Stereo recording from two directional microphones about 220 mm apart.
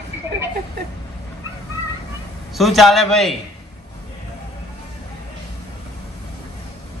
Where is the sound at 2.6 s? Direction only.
Centre (ahead or behind).